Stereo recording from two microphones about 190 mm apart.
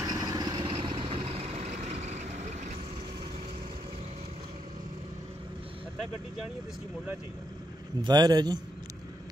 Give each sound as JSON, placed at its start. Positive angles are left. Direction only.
{"t": 0.0, "sound": "vehicle", "side_deg": -20}
{"t": 8.0, "sound": "a man's voice", "side_deg": -20}